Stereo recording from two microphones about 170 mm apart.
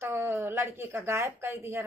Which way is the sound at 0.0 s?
15° right (ahead or behind).